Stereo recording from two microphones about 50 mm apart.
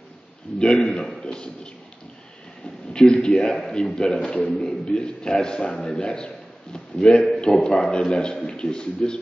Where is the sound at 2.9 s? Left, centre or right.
Centre.